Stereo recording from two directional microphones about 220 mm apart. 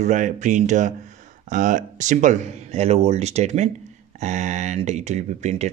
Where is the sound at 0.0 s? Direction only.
35° right (ahead or behind).